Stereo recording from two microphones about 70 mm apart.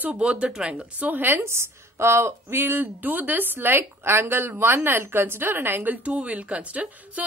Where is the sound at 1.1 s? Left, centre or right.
Right.